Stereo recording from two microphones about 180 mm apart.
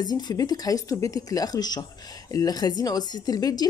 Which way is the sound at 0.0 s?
20° left (ahead or behind).